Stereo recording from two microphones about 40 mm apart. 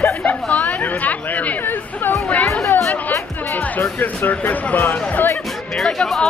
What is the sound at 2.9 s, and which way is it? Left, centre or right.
Music, left.